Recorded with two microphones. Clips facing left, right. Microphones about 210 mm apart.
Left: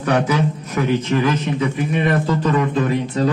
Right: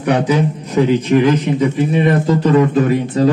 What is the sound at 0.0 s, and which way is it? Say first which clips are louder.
A man's voice: right 3 dB; 20° right (ahead or behind).